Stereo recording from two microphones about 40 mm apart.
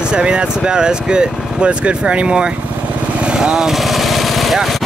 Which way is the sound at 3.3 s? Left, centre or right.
Right.